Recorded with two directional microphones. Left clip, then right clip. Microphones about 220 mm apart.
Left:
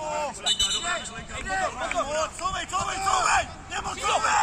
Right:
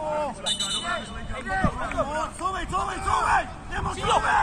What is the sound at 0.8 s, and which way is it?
Speech, 50° left (ahead or behind).